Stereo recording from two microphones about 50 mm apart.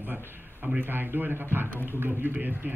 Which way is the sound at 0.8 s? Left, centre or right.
Right.